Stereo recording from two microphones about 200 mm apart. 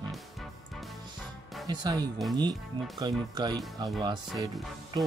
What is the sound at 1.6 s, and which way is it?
Speech, 20° right (ahead or behind).